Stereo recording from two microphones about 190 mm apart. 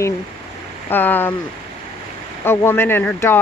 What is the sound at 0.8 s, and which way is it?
Speech, 10° left (ahead or behind).